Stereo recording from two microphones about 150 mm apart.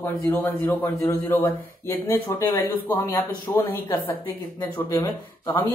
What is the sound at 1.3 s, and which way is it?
Speech, 15° left (ahead or behind).